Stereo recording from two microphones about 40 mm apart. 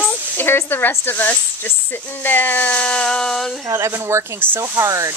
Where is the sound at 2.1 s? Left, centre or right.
Left.